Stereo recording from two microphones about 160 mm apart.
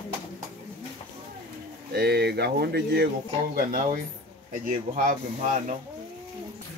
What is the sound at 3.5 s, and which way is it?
Speech, 60° right (ahead or behind).